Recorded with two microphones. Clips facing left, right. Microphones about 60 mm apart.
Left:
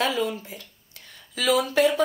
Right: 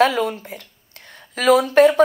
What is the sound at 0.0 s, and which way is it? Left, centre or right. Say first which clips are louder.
A woman's voice: right 8 dB; right.